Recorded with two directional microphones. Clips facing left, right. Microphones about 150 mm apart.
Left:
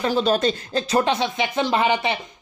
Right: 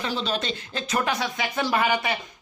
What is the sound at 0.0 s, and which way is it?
Speech, 45° left (ahead or behind).